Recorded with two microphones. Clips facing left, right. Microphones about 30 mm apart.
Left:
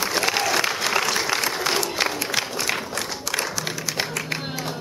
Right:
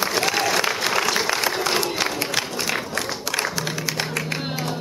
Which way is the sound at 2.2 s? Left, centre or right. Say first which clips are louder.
Even; centre.